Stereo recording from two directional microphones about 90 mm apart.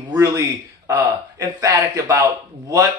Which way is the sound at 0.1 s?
35° right (ahead or behind).